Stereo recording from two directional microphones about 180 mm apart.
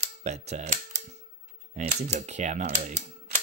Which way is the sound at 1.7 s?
40° right (ahead or behind).